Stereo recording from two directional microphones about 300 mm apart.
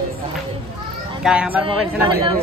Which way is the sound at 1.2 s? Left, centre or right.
Centre.